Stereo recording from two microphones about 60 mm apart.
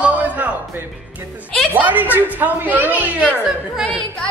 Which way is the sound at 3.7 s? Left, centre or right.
Centre.